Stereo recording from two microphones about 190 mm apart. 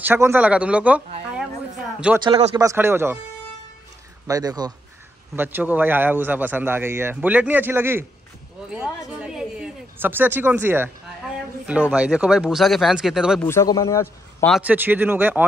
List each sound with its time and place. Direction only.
0.0 s a man's voice: 10° right (ahead or behind)
2.2 s speech: 25° right (ahead or behind)
2.6 s a man's voice: 15° right (ahead or behind)
4.3 s a man's voice: 20° right (ahead or behind); by 13.4 s 5° right (ahead or behind)
13.4 s speech: 15° left (ahead or behind)
14.6 s a man's voice: 10° right (ahead or behind)